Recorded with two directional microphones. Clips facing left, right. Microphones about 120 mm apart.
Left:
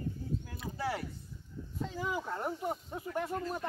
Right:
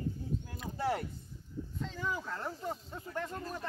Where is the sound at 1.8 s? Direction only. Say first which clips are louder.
Left 3 dB; 15° left (ahead or behind).